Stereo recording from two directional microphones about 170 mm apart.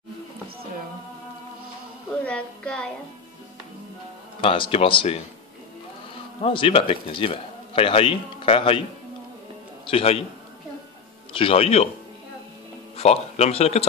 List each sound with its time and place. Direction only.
2.2 s speech: 5° left (ahead or behind)
4.4 s a man's voice: 30° left (ahead or behind)
6.4 s a man's voice: 30° left (ahead or behind)
9.8 s a man's voice: 35° left (ahead or behind)
11.3 s a man's voice: 35° left (ahead or behind)
12.9 s speech: 40° left (ahead or behind)